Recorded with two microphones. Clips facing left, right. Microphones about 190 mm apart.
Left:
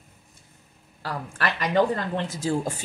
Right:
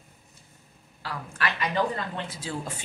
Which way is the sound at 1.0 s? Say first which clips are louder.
Left 3 dB; 45° left (ahead or behind).